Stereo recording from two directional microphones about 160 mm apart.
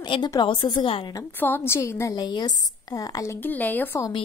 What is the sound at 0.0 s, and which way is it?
A woman's voice, 25° left (ahead or behind).